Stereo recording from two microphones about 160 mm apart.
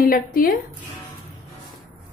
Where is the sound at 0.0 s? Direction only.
65° left (ahead or behind).